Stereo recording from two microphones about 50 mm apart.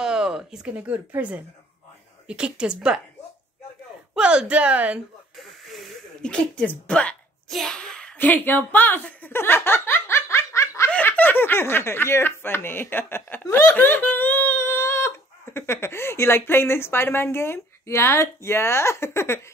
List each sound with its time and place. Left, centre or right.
0.0 s a sound: centre
1.2 s speech: right
2.2 s a woman's voice: right
4.1 s a woman's voice: centre
5.7 s snake: centre
6.2 s speech: centre
7.4 s a sound: centre
8.2 s speech: left
9.3 s speech: left
10.0 s laughter: left
11.1 s speech: left